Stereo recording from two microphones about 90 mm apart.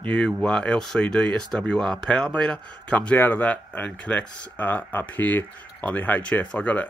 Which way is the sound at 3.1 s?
25° left (ahead or behind).